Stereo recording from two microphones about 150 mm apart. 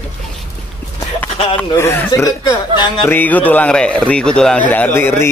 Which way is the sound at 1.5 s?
15° left (ahead or behind).